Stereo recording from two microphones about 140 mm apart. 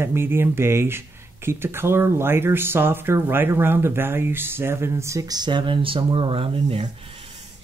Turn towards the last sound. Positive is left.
turn(degrees=-40)  # may be behind; listen again after turning